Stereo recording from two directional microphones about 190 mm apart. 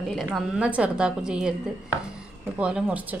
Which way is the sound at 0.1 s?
Centre (ahead or behind).